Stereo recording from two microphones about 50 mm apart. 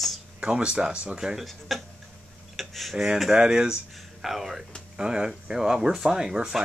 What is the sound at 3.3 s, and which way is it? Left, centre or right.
Speech, centre.